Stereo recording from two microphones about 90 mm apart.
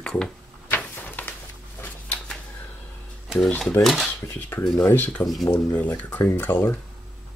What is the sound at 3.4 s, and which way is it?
Speech, 5° left (ahead or behind).